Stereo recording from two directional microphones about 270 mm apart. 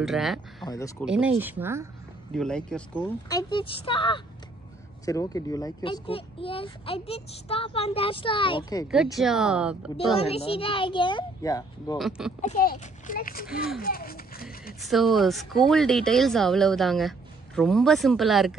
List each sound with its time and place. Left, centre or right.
0.0 s speech: centre
0.7 s speech: centre
1.0 s speech: centre
2.3 s speech: centre
8.8 s speech: centre
10.2 s speech: left
12.0 s speech: centre
12.4 s a child's voice: left
13.7 s a sound: left
14.8 s speech: centre